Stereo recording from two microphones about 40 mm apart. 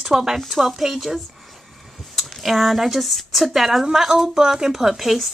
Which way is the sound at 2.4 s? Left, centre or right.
Centre.